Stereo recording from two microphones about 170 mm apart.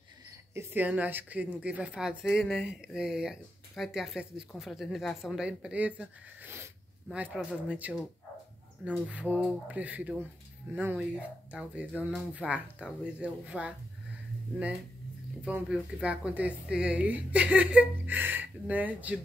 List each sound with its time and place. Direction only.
0.6 s a woman's voice: 10° right (ahead or behind)
15.4 s a woman's voice: 5° right (ahead or behind)